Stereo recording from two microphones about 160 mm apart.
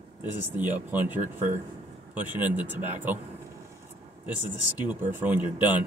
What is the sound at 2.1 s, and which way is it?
Speech, 10° right (ahead or behind).